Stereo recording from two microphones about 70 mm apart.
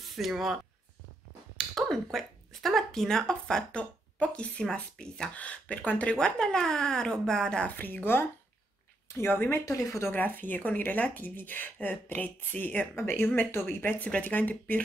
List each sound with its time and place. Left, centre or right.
0.0 s speech: centre
1.8 s speech: centre
7.7 s speech: left
9.7 s speech: left
10.1 s speech: left
12.9 s speech: left